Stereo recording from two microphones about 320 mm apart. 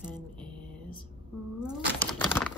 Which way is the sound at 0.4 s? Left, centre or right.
Centre.